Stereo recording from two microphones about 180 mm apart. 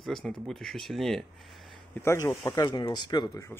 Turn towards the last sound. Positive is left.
turn(degrees=15)  # may be behind; listen again after turning